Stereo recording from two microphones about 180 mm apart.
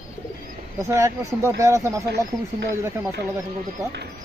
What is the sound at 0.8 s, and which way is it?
Speech, 15° right (ahead or behind).